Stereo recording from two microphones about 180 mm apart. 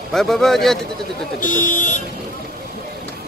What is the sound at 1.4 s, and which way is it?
Speech, 45° left (ahead or behind).